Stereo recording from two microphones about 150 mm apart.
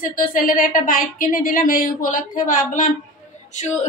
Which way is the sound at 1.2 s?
70° left (ahead or behind).